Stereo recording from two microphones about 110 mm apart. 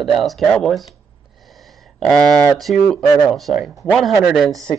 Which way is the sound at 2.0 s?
5° left (ahead or behind).